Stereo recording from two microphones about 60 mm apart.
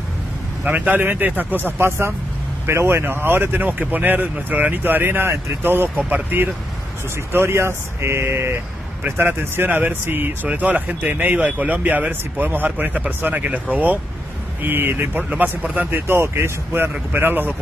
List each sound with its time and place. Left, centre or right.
0.7 s speech: right
7.3 s speech: right
14.6 s speech: right
15.1 s speech: right
15.9 s speech: right
17.1 s speech: right